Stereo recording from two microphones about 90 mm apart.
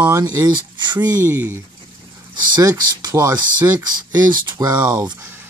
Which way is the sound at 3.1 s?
35° right (ahead or behind).